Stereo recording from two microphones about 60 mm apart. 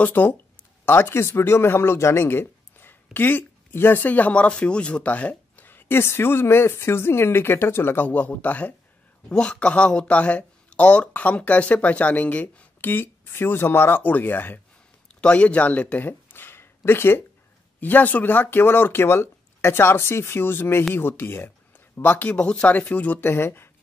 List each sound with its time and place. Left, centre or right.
0.0 s speech: left
0.8 s speech: left
15.1 s speech: left
17.7 s speech: left
20.9 s a sound: left
22.0 s speech: left